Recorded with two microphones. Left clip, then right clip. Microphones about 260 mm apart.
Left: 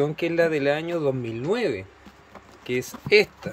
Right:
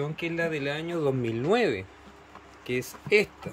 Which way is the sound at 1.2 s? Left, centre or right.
Centre.